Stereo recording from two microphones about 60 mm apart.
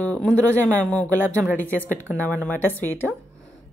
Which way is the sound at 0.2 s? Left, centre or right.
Centre.